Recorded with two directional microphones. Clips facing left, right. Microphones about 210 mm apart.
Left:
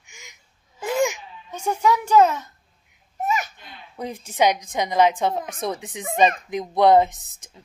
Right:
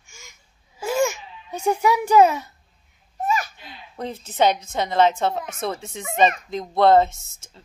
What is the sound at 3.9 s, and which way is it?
Speech, 10° left (ahead or behind).